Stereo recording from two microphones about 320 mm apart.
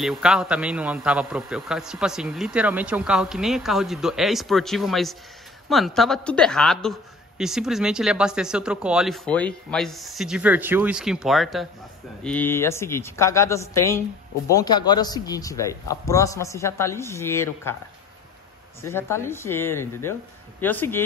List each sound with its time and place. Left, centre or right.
0.0 s a woman's voice: centre
18.8 s a man's voice: centre